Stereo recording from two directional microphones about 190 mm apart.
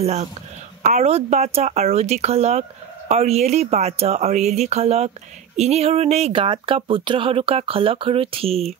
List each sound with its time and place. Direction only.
0.0 s speech: 35° right (ahead or behind)